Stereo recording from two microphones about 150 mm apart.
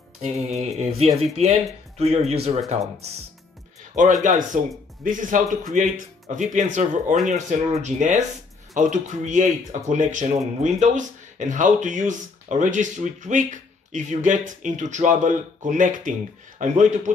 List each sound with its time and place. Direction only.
0.2 s speech: 45° right (ahead or behind)
4.2 s speech: 60° right (ahead or behind)